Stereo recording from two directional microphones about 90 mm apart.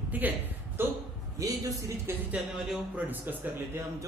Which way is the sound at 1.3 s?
40° right (ahead or behind).